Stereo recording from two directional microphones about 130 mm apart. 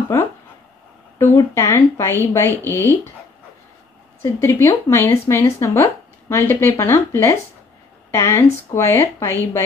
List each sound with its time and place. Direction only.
1.2 s speech: 20° left (ahead or behind)
4.2 s speech: 20° left (ahead or behind)